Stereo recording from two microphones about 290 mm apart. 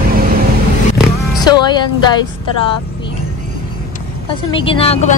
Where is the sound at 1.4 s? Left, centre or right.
Centre.